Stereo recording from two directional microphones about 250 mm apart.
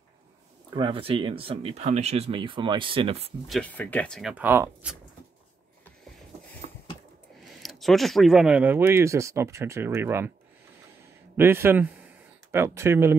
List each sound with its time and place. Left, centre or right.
0.7 s speech: right
3.4 s speech: centre
7.6 s speech: centre
11.3 s speech: centre